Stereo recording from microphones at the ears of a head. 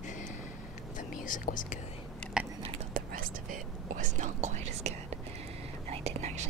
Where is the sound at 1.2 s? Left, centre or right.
Left.